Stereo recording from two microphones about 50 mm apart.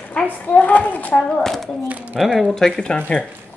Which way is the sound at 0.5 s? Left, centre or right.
Left.